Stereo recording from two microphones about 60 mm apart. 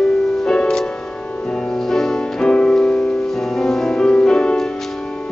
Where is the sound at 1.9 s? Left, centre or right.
Centre.